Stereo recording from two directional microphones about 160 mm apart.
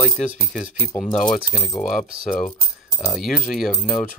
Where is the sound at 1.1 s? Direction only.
55° left (ahead or behind).